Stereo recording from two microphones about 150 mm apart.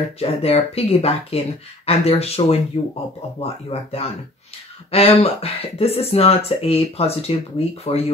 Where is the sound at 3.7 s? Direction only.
45° left (ahead or behind).